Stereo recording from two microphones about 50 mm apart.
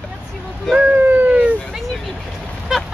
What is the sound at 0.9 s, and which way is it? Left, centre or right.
Speech, right.